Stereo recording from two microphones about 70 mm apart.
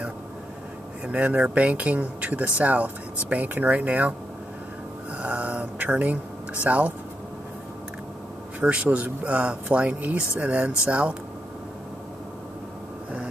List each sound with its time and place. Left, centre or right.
1.0 s speech: centre
5.1 s a sound: centre
8.5 s speech: centre